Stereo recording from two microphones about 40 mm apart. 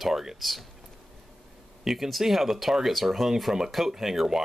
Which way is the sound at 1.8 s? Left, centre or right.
Centre.